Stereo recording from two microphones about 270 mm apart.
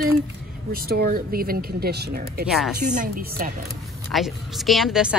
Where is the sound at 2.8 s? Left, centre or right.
Right.